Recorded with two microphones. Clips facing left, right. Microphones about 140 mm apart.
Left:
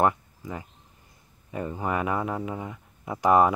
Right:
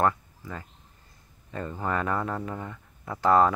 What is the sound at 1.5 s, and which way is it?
Speech, 15° left (ahead or behind).